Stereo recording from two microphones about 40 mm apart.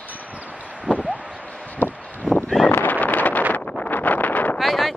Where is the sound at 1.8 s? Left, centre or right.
Left.